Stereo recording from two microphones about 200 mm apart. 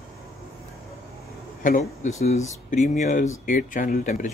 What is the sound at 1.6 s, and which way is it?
Speech, 45° left (ahead or behind).